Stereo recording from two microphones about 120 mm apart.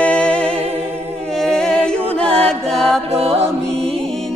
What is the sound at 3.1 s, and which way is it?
Music, 60° right (ahead or behind).